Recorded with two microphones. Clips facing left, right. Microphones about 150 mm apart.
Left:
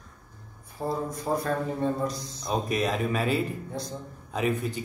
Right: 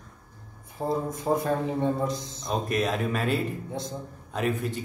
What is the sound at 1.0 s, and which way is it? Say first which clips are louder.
A man's voice: right 2 dB; 20° right (ahead or behind).